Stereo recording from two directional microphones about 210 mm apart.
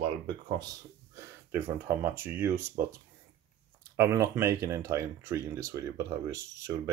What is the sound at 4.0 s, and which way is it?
Speech, 15° right (ahead or behind).